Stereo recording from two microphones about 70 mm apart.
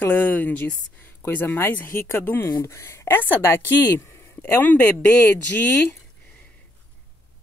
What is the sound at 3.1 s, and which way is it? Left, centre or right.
A man's voice, left.